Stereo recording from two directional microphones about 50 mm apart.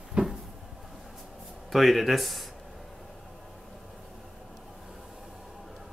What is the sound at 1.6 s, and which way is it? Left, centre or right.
Speech, centre.